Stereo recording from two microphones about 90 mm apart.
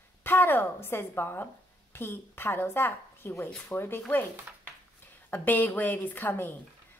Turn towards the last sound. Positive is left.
turn(degrees=20)  # may be behind; listen again after turning